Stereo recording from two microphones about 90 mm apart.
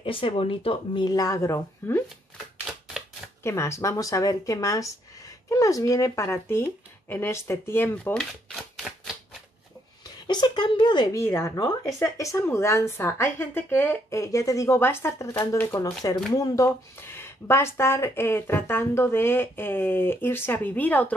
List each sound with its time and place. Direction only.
0.0 s speech: 80° left
1.0 s speech: 45° left (ahead or behind); by 2.0 s 30° left (ahead or behind)
3.4 s speech: 30° left (ahead or behind)
10.0 s a sound: 55° left (ahead or behind)
11.1 s speech: 30° left (ahead or behind)
14.2 s speech: 40° left (ahead or behind)
14.8 s speech: 25° left (ahead or behind)